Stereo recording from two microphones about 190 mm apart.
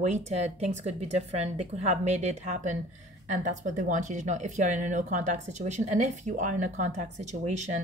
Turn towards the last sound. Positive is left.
turn(degrees=-40)  # may be behind; listen again after turning